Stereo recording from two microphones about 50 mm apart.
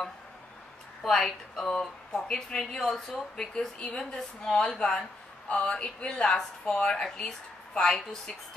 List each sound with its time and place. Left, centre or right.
1.0 s speech: centre